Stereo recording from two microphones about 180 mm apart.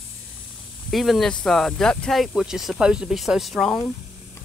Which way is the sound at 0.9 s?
Centre (ahead or behind).